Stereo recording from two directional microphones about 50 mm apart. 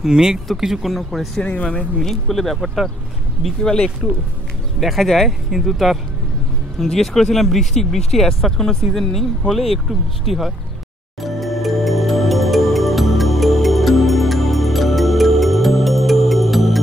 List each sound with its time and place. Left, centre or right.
0.0 s speech: centre
1.4 s speech: left
2.0 s speech: centre
3.6 s speech: centre
4.7 s speech: centre
9.5 s speech: centre
11.1 s music: centre